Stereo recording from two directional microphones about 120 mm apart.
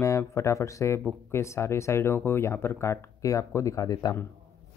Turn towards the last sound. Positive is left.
turn(degrees=30)  # may be behind; listen again after turning